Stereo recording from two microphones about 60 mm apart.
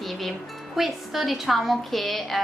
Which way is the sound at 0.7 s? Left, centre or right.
Centre.